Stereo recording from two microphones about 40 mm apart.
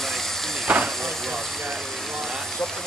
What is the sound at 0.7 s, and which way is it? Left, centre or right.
Steam, right.